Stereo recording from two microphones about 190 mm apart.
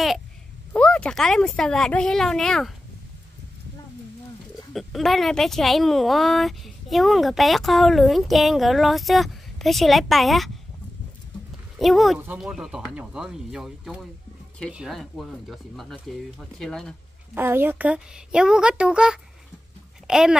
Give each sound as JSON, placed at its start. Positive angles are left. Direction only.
{"t": 0.7, "sound": "a woman's voice", "side_deg": 5}
{"t": 4.7, "sound": "a woman's voice", "side_deg": 0}
{"t": 11.8, "sound": "a woman's voice", "side_deg": 0}
{"t": 17.3, "sound": "a woman's voice", "side_deg": -10}